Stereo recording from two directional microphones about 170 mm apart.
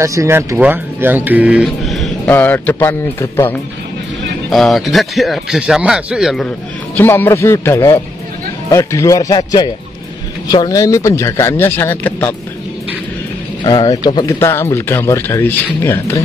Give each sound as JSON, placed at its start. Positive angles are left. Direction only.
{"t": 0.0, "sound": "speech", "side_deg": -20}
{"t": 2.2, "sound": "speech", "side_deg": 10}
{"t": 4.5, "sound": "speech", "side_deg": 0}
{"t": 7.0, "sound": "speech", "side_deg": 10}
{"t": 13.7, "sound": "speech", "side_deg": 25}